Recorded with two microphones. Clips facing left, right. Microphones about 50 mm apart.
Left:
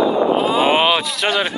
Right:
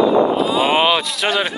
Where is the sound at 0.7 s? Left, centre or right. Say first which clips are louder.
Even; centre.